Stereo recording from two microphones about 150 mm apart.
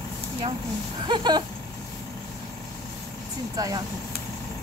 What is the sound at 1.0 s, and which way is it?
Vehicle, 30° right (ahead or behind).